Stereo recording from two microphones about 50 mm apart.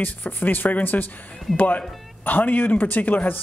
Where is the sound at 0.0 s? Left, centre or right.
Left.